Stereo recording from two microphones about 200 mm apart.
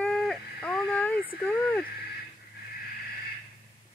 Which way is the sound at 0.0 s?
Centre (ahead or behind).